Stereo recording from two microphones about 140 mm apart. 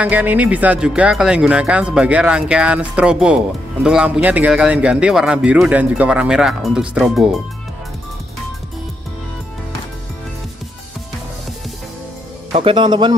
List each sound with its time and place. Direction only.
0.0 s speech: 10° right (ahead or behind)
12.5 s speech: 40° right (ahead or behind)